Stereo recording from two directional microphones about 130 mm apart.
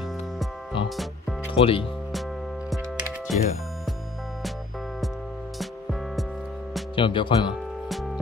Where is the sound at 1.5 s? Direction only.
45° left (ahead or behind).